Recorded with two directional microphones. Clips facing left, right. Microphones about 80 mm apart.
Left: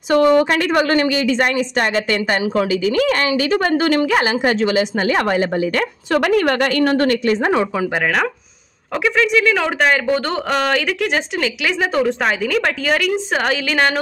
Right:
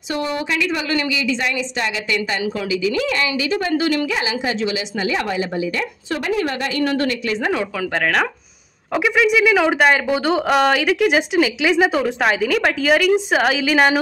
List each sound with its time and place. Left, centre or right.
0.1 s a woman's voice: left
7.9 s speech: centre
8.9 s speech: centre